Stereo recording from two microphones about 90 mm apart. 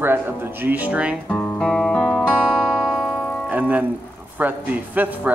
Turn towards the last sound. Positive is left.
turn(degrees=-20)  # may be behind; listen again after turning